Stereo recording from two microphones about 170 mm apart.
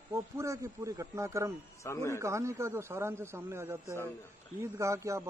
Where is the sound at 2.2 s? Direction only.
15° right (ahead or behind).